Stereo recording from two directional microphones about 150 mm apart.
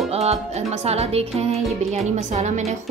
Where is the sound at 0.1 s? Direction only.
45° right (ahead or behind).